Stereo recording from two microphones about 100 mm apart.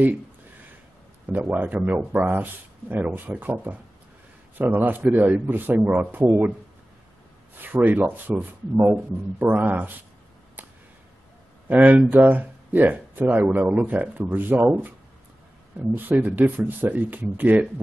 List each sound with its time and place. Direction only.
1.5 s speech: 15° right (ahead or behind)
7.5 s speech: 20° right (ahead or behind)
11.6 s speech: 15° right (ahead or behind)